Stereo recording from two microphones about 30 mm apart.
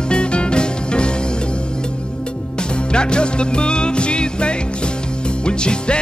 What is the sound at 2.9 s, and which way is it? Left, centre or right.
Music, left.